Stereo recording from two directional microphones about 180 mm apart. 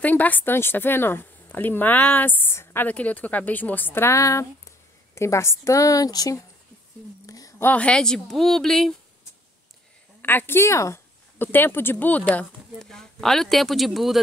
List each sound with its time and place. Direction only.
0.0 s speech: 10° left (ahead or behind)
10.2 s speech: 10° left (ahead or behind)